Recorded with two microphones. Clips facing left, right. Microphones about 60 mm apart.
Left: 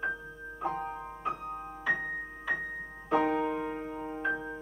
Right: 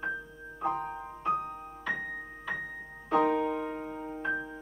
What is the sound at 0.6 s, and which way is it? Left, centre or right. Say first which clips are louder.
Music: right 2 dB; centre.